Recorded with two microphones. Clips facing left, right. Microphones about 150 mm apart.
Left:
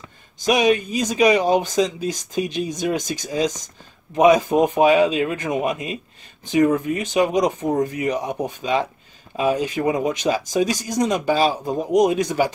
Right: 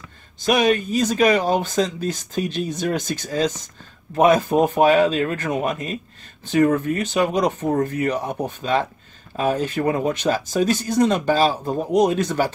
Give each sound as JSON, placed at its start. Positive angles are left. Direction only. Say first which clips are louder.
{"t": 0.5, "sound": "speech", "louder": "even", "side_deg": 15}